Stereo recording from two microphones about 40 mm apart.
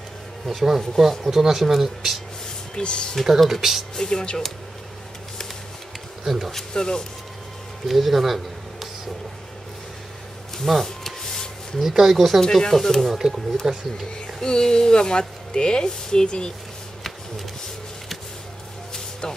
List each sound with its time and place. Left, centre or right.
0.5 s speech: centre
2.7 s speech: left
3.3 s speech: centre
3.9 s speech: centre
6.2 s speech: centre
6.7 s speech: centre
7.9 s speech: centre
10.6 s a sound: centre
11.8 s speech: centre
12.4 s speech: centre
13.6 s speech: centre
14.2 s speech: centre
19.2 s speech: centre